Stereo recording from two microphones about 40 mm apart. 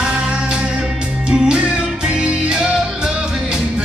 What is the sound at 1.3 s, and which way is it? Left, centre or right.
Music, centre.